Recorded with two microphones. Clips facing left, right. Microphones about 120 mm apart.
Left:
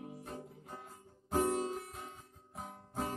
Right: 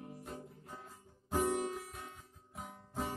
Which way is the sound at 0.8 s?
20° left (ahead or behind).